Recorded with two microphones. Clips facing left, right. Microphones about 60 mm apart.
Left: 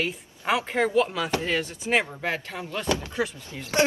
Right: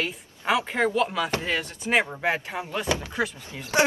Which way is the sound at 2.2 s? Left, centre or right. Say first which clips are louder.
Right 3 dB; right.